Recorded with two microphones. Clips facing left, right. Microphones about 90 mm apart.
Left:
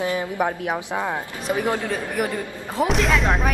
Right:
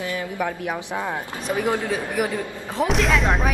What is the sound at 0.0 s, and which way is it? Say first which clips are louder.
A man's voice: left 3 dB; 20° left (ahead or behind).